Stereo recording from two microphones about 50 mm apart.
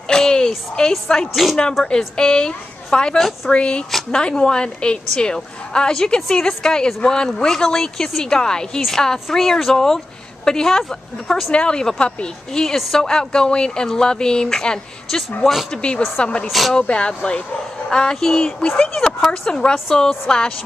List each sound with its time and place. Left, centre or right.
0.1 s a sound: centre
0.7 s a woman's voice: centre
1.3 s speech: centre
1.9 s a woman's voice: centre
11.5 s a woman's voice: centre
16.4 s speech: centre
16.8 s a woman's voice: left